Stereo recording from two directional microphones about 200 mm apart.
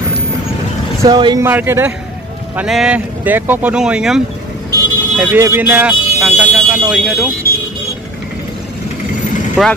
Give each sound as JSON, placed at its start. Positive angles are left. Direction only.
{"t": 1.0, "sound": "speech", "side_deg": -20}
{"t": 1.4, "sound": "speech", "side_deg": -10}
{"t": 9.6, "sound": "speech", "side_deg": 0}